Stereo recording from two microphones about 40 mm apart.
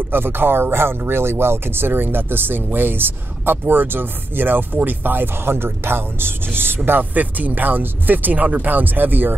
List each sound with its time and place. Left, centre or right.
0.1 s speech: right
6.9 s speech: right